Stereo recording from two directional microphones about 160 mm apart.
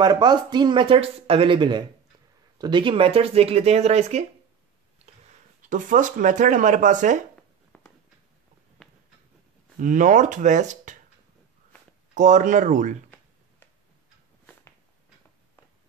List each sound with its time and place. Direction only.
0.0 s speech: 25° right (ahead or behind); by 4.3 s 40° right (ahead or behind)
5.6 s speech: 55° right (ahead or behind)
7.7 s a sound: 10° left (ahead or behind)
9.8 s speech: 55° right (ahead or behind)
12.1 s speech: 50° right (ahead or behind)